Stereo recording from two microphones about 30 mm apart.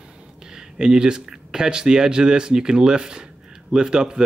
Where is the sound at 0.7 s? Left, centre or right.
Right.